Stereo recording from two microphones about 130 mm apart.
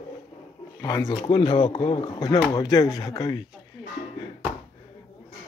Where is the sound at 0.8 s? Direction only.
25° left (ahead or behind).